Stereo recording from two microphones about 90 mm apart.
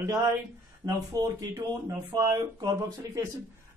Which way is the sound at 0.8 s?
40° right (ahead or behind).